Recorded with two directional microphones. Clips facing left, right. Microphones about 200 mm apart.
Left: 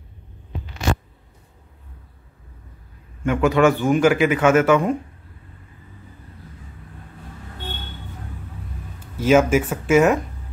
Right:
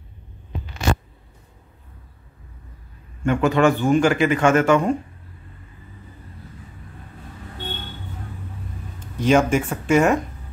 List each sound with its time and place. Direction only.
3.2 s speech: centre (ahead or behind)
9.1 s speech: 5° left (ahead or behind)